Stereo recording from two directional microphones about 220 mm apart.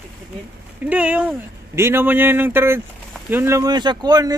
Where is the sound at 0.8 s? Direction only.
5° right (ahead or behind).